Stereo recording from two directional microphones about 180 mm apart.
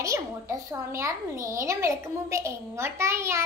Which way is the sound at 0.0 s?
15° right (ahead or behind).